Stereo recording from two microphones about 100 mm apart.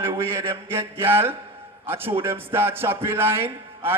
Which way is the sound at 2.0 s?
65° right (ahead or behind).